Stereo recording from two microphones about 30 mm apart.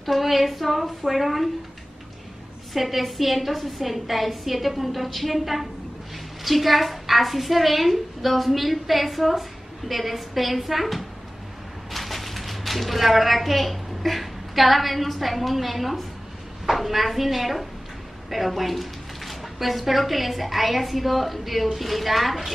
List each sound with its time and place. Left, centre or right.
0.0 s a woman's voice: centre
2.7 s a woman's voice: centre